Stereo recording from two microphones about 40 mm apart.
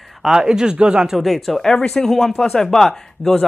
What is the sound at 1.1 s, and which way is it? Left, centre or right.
Speech, centre.